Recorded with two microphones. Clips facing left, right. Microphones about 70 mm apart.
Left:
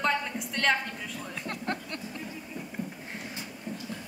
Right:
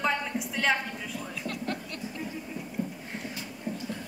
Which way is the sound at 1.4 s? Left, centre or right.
Left.